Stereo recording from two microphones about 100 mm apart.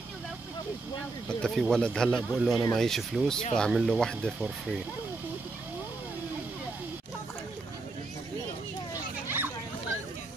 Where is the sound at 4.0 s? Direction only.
5° left (ahead or behind).